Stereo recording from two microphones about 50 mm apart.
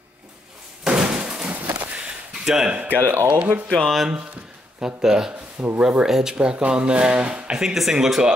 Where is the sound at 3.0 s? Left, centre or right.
Right.